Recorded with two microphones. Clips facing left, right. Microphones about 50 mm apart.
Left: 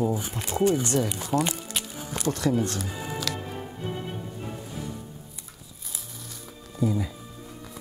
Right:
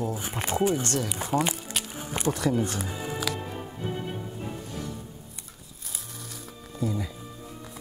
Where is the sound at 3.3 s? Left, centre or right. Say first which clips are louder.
Right 2 dB; centre.